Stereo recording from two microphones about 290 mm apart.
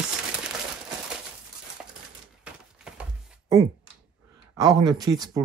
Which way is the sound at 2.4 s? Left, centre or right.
Centre.